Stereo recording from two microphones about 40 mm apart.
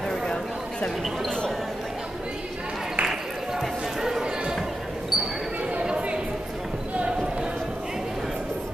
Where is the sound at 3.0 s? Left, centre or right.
Centre.